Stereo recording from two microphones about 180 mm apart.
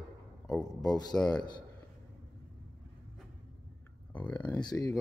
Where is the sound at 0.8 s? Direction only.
20° left (ahead or behind).